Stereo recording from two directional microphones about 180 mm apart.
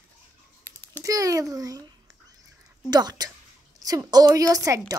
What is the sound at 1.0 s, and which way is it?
Speech, 20° right (ahead or behind).